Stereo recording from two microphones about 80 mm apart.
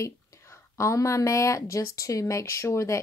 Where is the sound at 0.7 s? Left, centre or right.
Left.